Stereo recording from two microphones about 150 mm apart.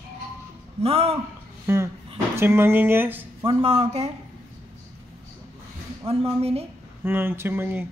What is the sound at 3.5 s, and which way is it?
Speech, 40° right (ahead or behind).